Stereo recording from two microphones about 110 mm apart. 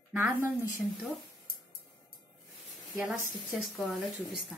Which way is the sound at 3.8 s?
Centre (ahead or behind).